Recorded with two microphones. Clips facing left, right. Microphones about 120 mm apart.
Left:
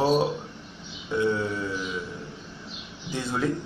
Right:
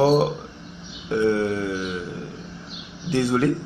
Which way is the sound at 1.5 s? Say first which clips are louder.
Right 5 dB; 70° right (ahead or behind).